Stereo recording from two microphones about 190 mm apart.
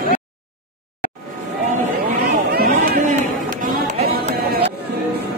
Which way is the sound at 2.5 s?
55° right (ahead or behind).